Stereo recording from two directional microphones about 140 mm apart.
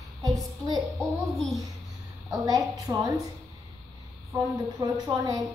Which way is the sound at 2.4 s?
25° right (ahead or behind).